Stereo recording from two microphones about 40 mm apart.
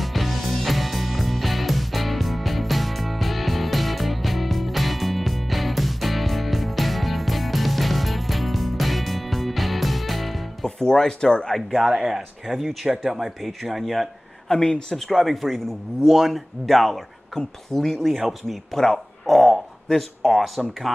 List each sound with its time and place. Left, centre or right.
0.0 s music: centre
10.8 s speech: centre
11.5 s speech: centre
14.5 s speech: centre
15.0 s speech: centre
16.0 s speech: centre
17.3 s speech: centre
18.1 s speech: centre
18.7 s speech: centre
19.2 s speech: centre